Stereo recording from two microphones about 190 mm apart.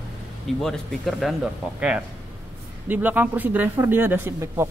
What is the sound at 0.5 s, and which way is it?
Speech, centre (ahead or behind).